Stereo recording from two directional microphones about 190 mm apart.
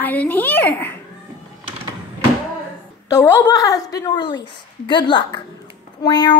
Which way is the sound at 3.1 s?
15° left (ahead or behind).